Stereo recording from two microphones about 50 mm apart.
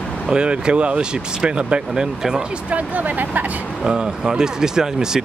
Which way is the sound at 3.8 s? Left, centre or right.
Centre.